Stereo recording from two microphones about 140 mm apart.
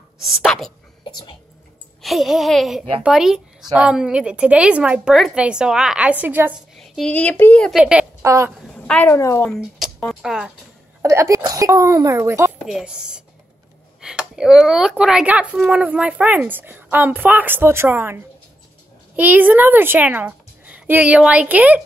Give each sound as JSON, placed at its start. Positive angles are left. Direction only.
{"t": 0.2, "sound": "a woman's voice", "side_deg": 0}
{"t": 2.0, "sound": "a woman's voice", "side_deg": 0}
{"t": 6.8, "sound": "speech", "side_deg": 5}
{"t": 7.7, "sound": "a woman's voice", "side_deg": -5}
{"t": 8.2, "sound": "a woman's voice", "side_deg": -20}
{"t": 8.6, "sound": "a sound", "side_deg": 5}
{"t": 9.1, "sound": "a woman's voice", "side_deg": 20}
{"t": 9.5, "sound": "a sound", "side_deg": -5}
{"t": 10.2, "sound": "a woman's voice", "side_deg": -5}
{"t": 11.0, "sound": "speech", "side_deg": -20}
{"t": 12.6, "sound": "a woman's voice", "side_deg": -5}